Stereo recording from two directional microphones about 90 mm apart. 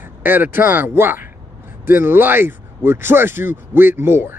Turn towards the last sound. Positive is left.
turn(degrees=-25)  # may be behind; listen again after turning